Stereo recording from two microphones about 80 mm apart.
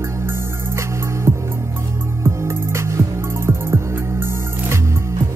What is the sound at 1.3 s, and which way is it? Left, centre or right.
Music, right.